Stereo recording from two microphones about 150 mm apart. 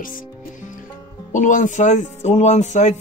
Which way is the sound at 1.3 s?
55° left (ahead or behind).